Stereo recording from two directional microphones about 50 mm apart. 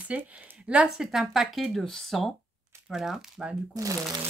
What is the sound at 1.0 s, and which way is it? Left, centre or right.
Speech, centre.